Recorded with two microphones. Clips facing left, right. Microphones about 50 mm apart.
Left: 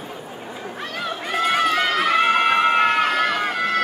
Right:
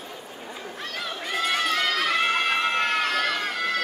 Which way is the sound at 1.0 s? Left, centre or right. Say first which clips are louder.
Left 5 dB; centre.